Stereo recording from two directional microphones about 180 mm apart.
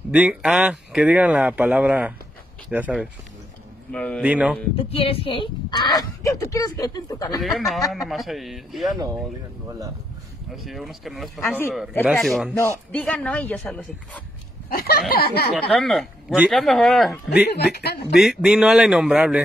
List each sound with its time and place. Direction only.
0.1 s speech: 5° right (ahead or behind)
3.9 s speech: 5° left (ahead or behind)
4.2 s speech: 5° right (ahead or behind)
4.7 s speech: 30° left (ahead or behind)
7.5 s speech: centre (ahead or behind)
10.5 s speech: centre (ahead or behind)
11.4 s speech: 15° left (ahead or behind)
12.1 s speech: centre (ahead or behind)
12.5 s speech: 10° left (ahead or behind)
14.7 s speech: 55° left (ahead or behind)
15.5 s speech: centre (ahead or behind)
17.5 s speech: 60° left (ahead or behind)
18.2 s speech: centre (ahead or behind)